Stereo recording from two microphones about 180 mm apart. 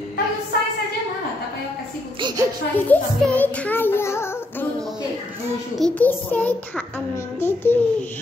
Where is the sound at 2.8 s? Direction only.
10° left (ahead or behind).